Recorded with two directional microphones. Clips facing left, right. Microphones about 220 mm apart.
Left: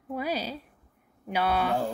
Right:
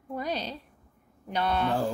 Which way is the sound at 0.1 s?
5° left (ahead or behind).